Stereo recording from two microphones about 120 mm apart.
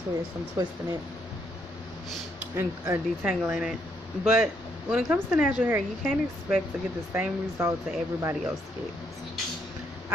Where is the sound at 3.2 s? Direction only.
5° right (ahead or behind).